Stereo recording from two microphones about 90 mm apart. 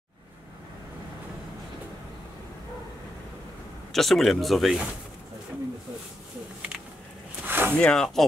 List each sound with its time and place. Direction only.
3.9 s speech: 5° left (ahead or behind)
7.4 s a sound: 25° right (ahead or behind)
7.7 s speech: 10° left (ahead or behind)